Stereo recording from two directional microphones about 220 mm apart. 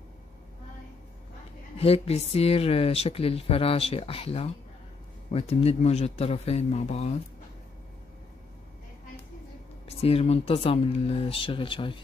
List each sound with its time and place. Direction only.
1.8 s speech: 25° left (ahead or behind)
9.8 s speech: 25° left (ahead or behind)